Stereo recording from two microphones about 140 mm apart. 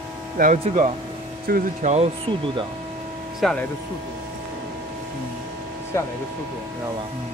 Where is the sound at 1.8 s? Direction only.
50° right (ahead or behind).